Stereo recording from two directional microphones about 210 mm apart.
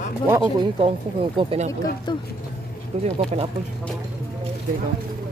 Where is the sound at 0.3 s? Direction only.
20° right (ahead or behind).